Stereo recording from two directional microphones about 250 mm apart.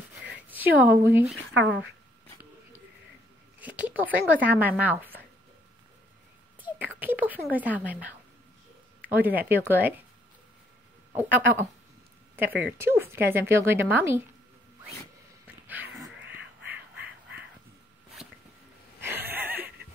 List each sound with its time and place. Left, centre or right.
0.2 s a sound: centre
1.6 s speech: right
3.6 s speech: centre
6.6 s a woman's voice: centre
9.1 s speech: centre
11.1 s speech: centre
12.7 s speech: centre
15.6 s a sound: centre
16.3 s duck: centre
18.9 s a sound: centre